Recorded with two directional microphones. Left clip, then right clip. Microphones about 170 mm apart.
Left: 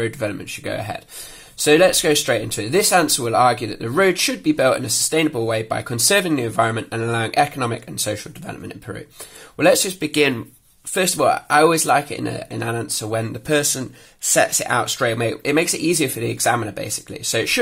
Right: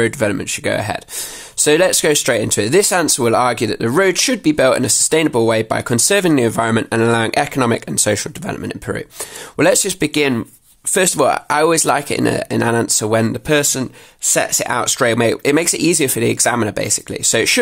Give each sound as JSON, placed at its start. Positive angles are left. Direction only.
{"t": 0.0, "sound": "speech", "side_deg": -50}
{"t": 10.1, "sound": "speech", "side_deg": -35}
{"t": 11.0, "sound": "speech", "side_deg": -50}
{"t": 13.5, "sound": "speech", "side_deg": -35}